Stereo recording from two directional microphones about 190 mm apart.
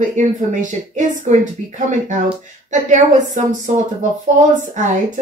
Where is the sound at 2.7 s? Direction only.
40° right (ahead or behind).